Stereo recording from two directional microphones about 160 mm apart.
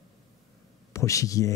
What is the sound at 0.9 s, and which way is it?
Speech, 20° left (ahead or behind).